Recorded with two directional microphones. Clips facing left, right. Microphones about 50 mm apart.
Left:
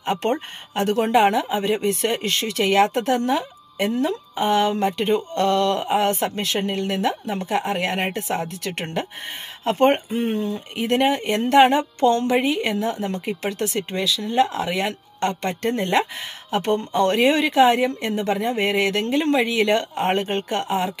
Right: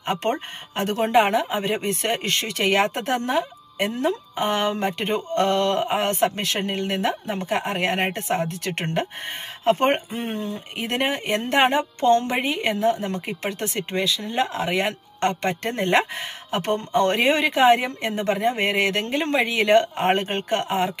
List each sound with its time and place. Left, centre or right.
0.0 s speech: right
0.7 s a woman's voice: right
2.0 s speech: right
6.7 s a woman's voice: right
10.8 s speech: right
11.1 s a woman's voice: right
13.5 s speech: right
17.2 s a woman's voice: right
18.1 s speech: right